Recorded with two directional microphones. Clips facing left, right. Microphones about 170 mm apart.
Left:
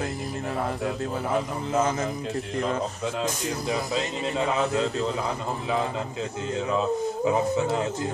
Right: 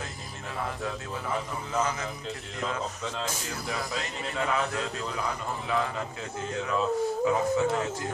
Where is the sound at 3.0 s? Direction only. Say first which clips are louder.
Left 6 dB; 15° left (ahead or behind).